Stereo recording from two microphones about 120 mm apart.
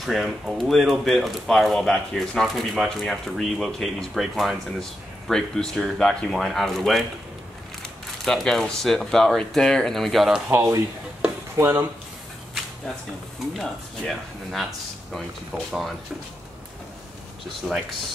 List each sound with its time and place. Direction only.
0.0 s speech: centre (ahead or behind)
10.5 s speech: 25° right (ahead or behind)
13.5 s speech: centre (ahead or behind)
17.6 s speech: centre (ahead or behind)